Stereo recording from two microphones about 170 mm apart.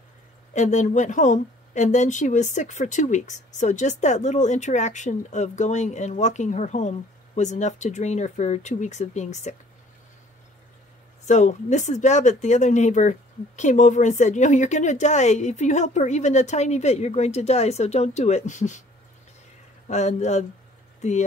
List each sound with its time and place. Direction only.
0.5 s speech: 45° left (ahead or behind)
11.2 s speech: 45° left (ahead or behind)
19.9 s speech: 40° left (ahead or behind)